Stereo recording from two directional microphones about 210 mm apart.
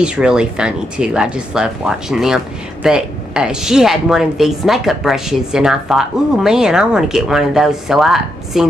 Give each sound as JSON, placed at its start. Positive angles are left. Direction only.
{"t": 0.0, "sound": "speech", "side_deg": -5}